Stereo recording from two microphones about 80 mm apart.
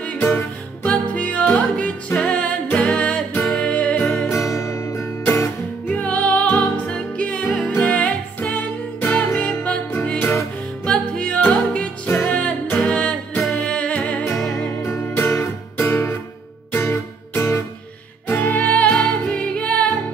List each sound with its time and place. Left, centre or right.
0.0 s music: centre
4.3 s music: left
5.9 s music: centre
6.4 s music: left
6.8 s music: centre
10.9 s music: centre
12.9 s music: centre
13.4 s music: centre
13.7 s music: centre
14.3 s music: left
18.3 s music: left